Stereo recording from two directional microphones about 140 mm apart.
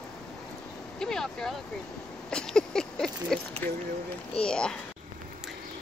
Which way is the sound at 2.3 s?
5° left (ahead or behind).